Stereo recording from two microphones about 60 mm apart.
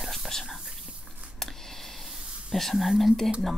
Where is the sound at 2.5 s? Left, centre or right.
Centre.